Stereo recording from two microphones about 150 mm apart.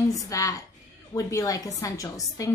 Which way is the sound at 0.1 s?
20° left (ahead or behind).